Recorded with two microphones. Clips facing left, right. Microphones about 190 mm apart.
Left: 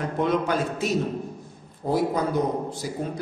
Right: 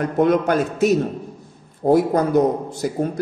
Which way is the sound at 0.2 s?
55° right (ahead or behind).